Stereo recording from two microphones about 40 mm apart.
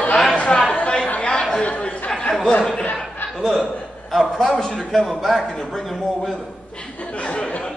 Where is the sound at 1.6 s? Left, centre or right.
Left.